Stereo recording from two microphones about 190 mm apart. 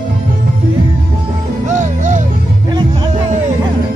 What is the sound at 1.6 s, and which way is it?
Music, 40° right (ahead or behind).